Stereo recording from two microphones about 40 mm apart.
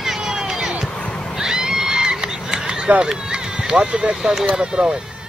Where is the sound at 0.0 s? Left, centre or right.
Centre.